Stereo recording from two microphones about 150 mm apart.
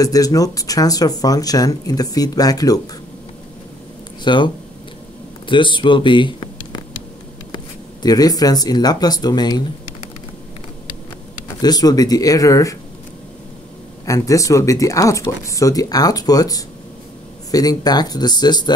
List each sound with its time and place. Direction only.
0.0 s speech: 25° left (ahead or behind)
4.2 s speech: 30° left (ahead or behind)
5.5 s speech: 35° left (ahead or behind)
11.6 s speech: 25° left (ahead or behind)
14.0 s speech: 20° left (ahead or behind)